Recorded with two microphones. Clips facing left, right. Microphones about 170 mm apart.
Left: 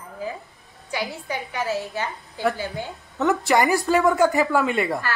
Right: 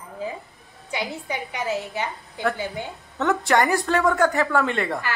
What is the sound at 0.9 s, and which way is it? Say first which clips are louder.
A woman's voice: even; 20° right (ahead or behind).